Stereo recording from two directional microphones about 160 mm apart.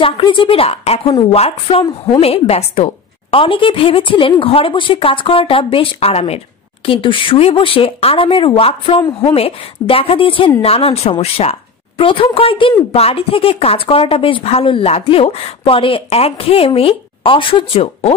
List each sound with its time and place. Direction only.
0.0 s a woman's voice: 30° left (ahead or behind)